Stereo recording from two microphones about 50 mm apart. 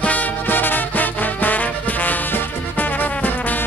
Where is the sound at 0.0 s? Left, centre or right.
Left.